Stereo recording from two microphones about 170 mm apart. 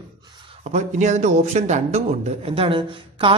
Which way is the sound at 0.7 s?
45° right (ahead or behind).